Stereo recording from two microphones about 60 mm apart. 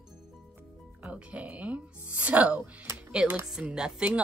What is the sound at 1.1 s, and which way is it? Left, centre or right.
Speech, right.